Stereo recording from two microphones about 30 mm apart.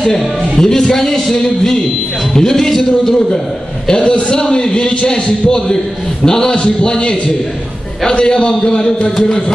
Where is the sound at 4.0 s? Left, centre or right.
Left.